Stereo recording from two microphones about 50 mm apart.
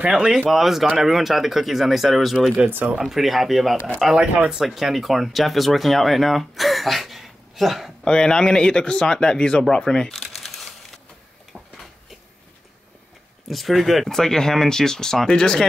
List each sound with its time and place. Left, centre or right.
0.0 s speech: centre
8.0 s speech: centre
10.1 s a sound: centre
13.5 s speech: centre